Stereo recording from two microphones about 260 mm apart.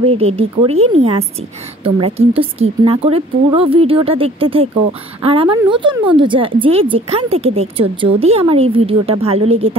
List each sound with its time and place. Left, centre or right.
0.0 s speech: right